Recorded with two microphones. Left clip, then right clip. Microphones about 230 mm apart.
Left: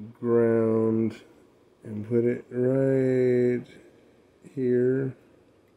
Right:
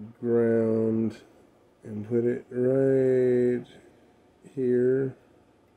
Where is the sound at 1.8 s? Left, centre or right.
Left.